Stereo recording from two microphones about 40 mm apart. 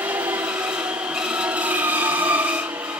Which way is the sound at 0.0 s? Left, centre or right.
Right.